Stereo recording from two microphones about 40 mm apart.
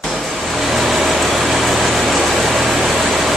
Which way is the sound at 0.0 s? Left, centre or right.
Centre.